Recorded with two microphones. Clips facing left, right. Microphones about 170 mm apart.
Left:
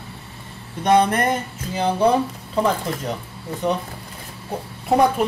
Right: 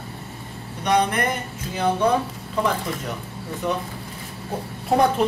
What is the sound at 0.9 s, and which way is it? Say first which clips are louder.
Speech: left 4 dB; 40° left (ahead or behind).